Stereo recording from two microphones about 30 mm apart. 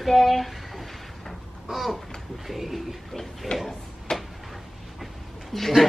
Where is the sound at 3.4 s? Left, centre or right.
Centre.